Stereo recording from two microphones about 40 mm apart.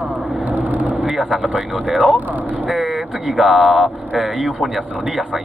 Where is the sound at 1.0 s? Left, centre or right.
Centre.